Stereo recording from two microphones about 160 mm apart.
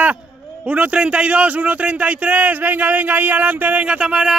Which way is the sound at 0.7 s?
10° right (ahead or behind).